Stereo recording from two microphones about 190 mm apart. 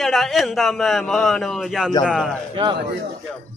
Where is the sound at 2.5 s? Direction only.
25° right (ahead or behind).